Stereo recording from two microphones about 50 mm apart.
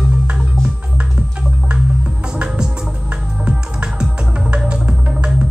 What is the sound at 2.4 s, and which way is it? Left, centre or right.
Music, centre.